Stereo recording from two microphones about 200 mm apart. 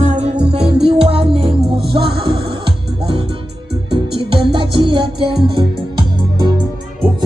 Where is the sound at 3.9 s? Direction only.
25° right (ahead or behind).